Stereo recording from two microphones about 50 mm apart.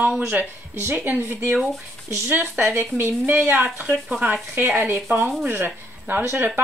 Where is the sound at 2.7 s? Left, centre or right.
Right.